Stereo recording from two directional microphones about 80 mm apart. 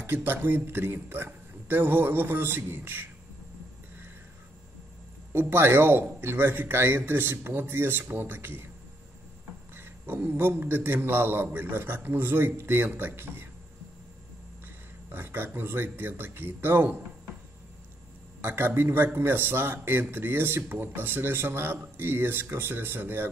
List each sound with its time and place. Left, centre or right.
0.0 s a man's voice: right
5.3 s a man's voice: right
9.8 s a man's voice: right
15.0 s a man's voice: right
18.4 s a man's voice: right